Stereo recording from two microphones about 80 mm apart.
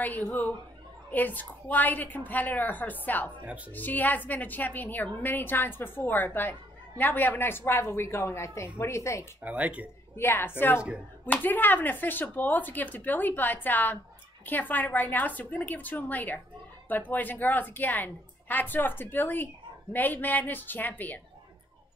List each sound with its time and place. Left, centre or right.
0.3 s a woman's voice: left
9.4 s speech: centre
10.1 s a woman's voice: left